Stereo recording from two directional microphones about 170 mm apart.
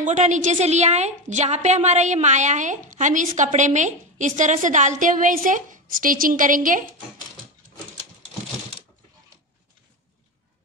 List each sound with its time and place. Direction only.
0.0 s a woman's voice: 45° right (ahead or behind)